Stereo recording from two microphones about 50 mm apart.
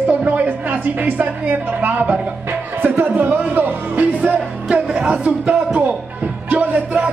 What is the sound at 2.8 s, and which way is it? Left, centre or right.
Music, right.